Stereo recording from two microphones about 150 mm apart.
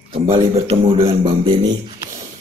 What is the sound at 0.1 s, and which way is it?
Speech, 40° right (ahead or behind).